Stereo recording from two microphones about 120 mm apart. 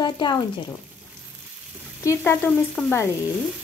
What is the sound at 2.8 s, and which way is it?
Frying, 5° right (ahead or behind).